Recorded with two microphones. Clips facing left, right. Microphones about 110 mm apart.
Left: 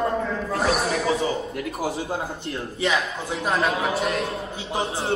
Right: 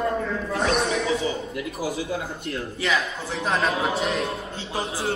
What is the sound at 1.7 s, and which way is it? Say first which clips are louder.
A man's voice: left 1 dB; 30° left (ahead or behind).